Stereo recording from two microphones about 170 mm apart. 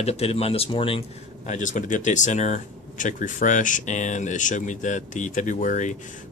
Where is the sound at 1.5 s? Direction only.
45° left (ahead or behind).